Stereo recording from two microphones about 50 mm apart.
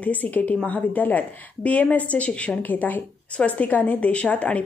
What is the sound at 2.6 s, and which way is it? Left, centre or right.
A woman's voice, left.